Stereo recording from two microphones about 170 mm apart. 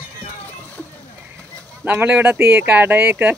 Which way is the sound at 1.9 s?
10° right (ahead or behind).